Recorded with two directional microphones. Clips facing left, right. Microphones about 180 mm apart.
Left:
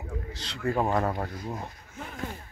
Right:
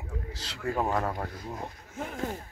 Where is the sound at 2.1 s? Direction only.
35° right (ahead or behind).